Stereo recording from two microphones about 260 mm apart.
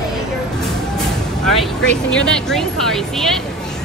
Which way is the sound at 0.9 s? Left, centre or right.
Centre.